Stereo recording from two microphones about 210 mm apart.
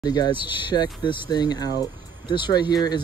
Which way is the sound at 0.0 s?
20° left (ahead or behind).